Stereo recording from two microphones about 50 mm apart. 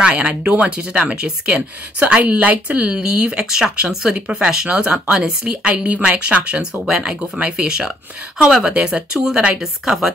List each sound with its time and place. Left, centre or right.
0.0 s speech: right
9.6 s speech: centre